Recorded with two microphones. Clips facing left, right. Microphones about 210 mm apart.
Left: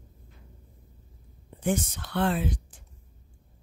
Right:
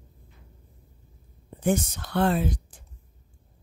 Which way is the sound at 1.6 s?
45° right (ahead or behind).